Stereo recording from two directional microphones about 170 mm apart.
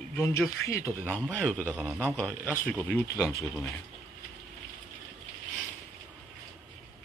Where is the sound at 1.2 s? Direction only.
5° right (ahead or behind).